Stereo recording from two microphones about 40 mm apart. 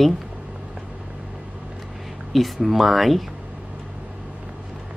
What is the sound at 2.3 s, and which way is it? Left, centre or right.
Speech, centre.